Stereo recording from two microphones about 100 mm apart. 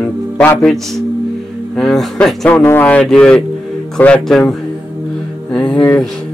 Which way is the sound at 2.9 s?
10° left (ahead or behind).